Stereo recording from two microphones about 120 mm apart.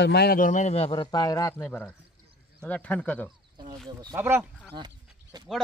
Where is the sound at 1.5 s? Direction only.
15° left (ahead or behind).